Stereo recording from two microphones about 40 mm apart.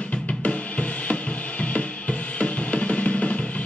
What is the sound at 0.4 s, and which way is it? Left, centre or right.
Drum, left.